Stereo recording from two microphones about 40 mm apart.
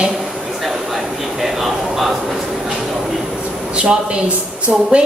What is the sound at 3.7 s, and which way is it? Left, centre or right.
Speech, right.